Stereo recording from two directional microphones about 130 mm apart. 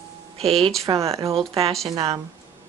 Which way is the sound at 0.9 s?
30° right (ahead or behind).